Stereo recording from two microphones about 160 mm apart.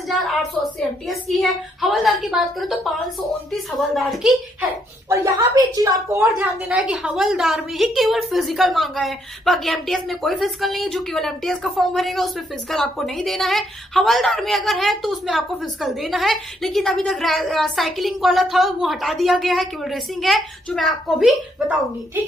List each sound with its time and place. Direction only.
0.2 s a woman's voice: centre (ahead or behind)
5.5 s a woman's voice: 20° right (ahead or behind)
6.3 s a woman's voice: 5° right (ahead or behind)